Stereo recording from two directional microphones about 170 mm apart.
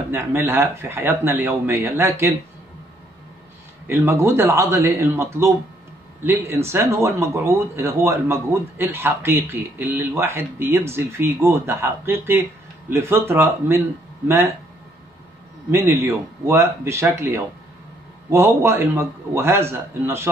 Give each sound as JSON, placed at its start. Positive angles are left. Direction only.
{"t": 0.1, "sound": "speech", "side_deg": -15}
{"t": 3.8, "sound": "speech", "side_deg": -15}
{"t": 15.7, "sound": "speech", "side_deg": -15}